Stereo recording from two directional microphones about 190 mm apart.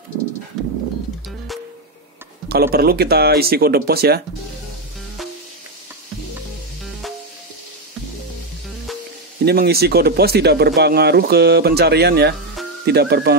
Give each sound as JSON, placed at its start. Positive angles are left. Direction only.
{"t": 0.6, "sound": "pigeon", "side_deg": 0}
{"t": 2.4, "sound": "speech", "side_deg": -55}
{"t": 9.4, "sound": "speech", "side_deg": -55}